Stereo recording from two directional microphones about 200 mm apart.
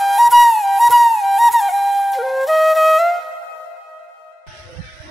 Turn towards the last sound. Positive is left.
turn(degrees=0)  # may be behind; listen again after turning